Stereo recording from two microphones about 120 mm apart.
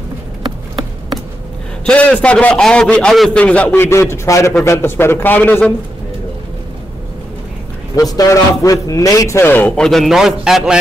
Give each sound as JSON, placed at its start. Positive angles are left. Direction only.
{"t": 1.9, "sound": "a man's voice", "side_deg": 10}
{"t": 7.9, "sound": "a man's voice", "side_deg": 30}